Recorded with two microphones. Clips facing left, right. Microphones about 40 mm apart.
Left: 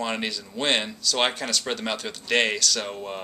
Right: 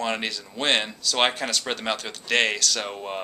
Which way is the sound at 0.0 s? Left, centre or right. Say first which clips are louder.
Right 1 dB; centre.